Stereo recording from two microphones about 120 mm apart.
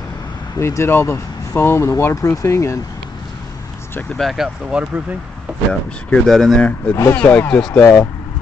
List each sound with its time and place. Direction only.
0.6 s speech: 25° left (ahead or behind)
4.2 s speech: centre (ahead or behind)
5.7 s speech: 5° left (ahead or behind)
7.0 s speech: 15° left (ahead or behind)